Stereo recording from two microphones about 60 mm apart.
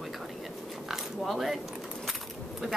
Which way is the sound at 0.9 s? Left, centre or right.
Centre.